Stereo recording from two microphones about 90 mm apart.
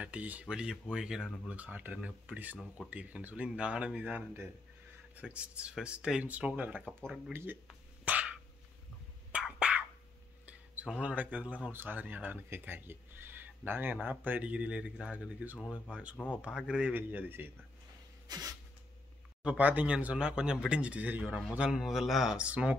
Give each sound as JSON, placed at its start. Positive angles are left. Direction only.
{"t": 0.0, "sound": "speech", "side_deg": -15}
{"t": 6.8, "sound": "speech", "side_deg": 10}
{"t": 8.0, "sound": "dog", "side_deg": -20}
{"t": 9.3, "sound": "whispering", "side_deg": -10}
{"t": 10.4, "sound": "a sound", "side_deg": -20}
{"t": 11.0, "sound": "speech", "side_deg": -15}
{"t": 18.3, "sound": "a sound", "side_deg": -50}
{"t": 19.4, "sound": "speech", "side_deg": -15}
{"t": 21.5, "sound": "speech", "side_deg": -5}